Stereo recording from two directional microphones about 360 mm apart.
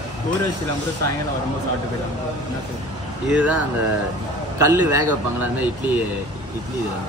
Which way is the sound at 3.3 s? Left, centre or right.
Centre.